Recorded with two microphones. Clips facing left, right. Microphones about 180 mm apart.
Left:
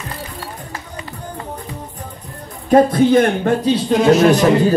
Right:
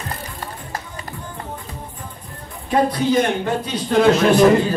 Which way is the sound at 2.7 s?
50° left (ahead or behind).